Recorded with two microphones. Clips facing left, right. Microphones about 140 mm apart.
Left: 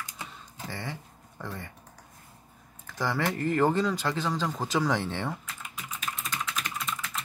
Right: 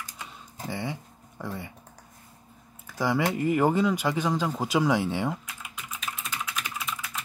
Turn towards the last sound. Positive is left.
turn(degrees=-5)  # may be behind; listen again after turning